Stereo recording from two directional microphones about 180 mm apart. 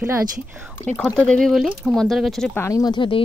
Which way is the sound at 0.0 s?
10° right (ahead or behind).